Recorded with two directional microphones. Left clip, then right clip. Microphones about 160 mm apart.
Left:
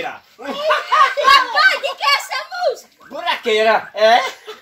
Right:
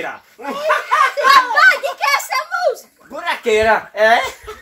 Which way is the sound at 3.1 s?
10° right (ahead or behind).